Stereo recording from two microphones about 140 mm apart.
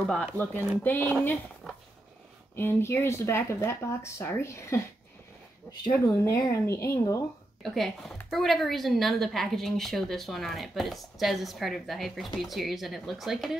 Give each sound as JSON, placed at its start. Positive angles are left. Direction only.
{"t": 0.0, "sound": "speech", "side_deg": 10}
{"t": 2.5, "sound": "speech", "side_deg": 15}
{"t": 5.9, "sound": "speech", "side_deg": 15}
{"t": 7.6, "sound": "a woman's voice", "side_deg": 0}